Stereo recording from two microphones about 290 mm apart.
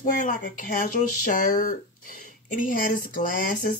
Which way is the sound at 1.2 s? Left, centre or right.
Left.